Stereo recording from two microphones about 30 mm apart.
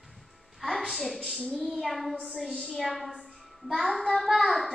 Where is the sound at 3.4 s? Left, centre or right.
Centre.